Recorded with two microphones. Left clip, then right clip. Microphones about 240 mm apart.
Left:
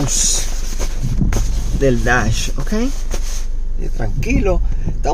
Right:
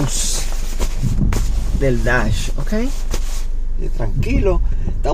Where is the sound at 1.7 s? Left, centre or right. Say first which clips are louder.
Left 2 dB; left.